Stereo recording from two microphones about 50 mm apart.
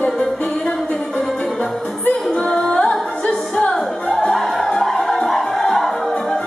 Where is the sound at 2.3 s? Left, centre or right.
Centre.